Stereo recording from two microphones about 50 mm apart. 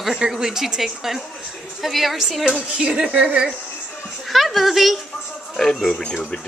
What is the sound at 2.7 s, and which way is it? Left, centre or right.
Speech, centre.